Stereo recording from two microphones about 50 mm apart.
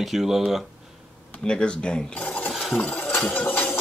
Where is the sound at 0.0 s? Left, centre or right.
Centre.